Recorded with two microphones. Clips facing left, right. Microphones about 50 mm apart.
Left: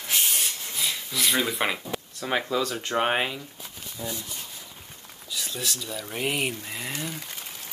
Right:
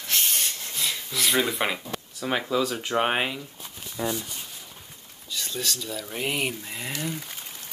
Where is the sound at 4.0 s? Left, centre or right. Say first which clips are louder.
Right 6 dB; right.